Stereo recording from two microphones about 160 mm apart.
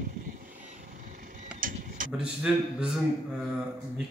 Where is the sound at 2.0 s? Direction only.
5° right (ahead or behind).